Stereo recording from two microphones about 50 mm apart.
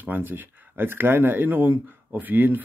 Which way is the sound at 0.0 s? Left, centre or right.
Right.